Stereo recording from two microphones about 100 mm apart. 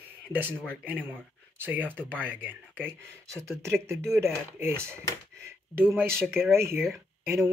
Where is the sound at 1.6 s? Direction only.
15° right (ahead or behind).